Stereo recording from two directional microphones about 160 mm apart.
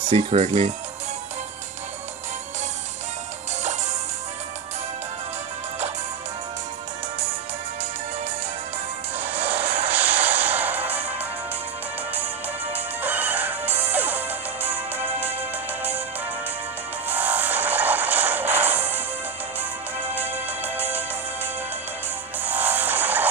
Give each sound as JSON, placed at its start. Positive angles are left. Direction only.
{"t": 0.1, "sound": "speech", "side_deg": -45}
{"t": 9.2, "sound": "music", "side_deg": -10}
{"t": 12.7, "sound": "music", "side_deg": -10}
{"t": 17.1, "sound": "music", "side_deg": -10}
{"t": 20.2, "sound": "music", "side_deg": -10}
{"t": 22.4, "sound": "music", "side_deg": -10}